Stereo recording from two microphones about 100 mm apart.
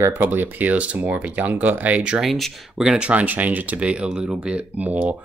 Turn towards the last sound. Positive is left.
turn(degrees=-15)  # may be behind; listen again after turning